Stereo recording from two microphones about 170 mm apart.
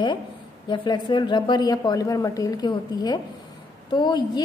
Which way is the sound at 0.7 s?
25° left (ahead or behind).